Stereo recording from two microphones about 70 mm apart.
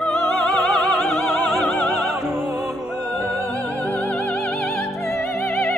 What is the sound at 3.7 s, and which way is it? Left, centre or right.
Music, left.